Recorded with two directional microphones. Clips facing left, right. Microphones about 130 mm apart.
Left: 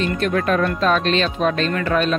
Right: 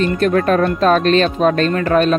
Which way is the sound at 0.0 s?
40° right (ahead or behind).